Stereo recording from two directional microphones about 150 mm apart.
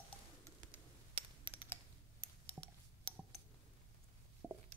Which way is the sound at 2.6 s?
15° right (ahead or behind).